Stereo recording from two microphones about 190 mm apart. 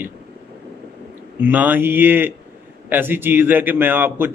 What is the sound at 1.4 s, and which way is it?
Speech, 10° right (ahead or behind).